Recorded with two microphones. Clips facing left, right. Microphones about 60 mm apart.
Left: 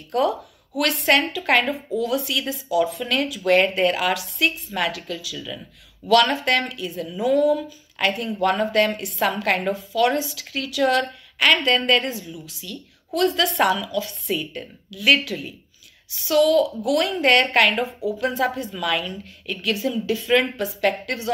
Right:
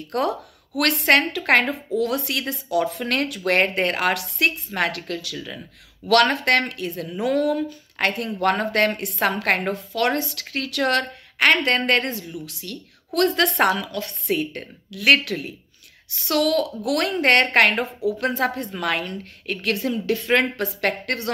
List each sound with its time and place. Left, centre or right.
0.1 s a woman's voice: right